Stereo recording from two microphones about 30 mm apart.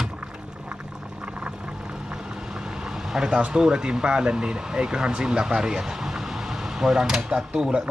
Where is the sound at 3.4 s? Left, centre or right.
Right.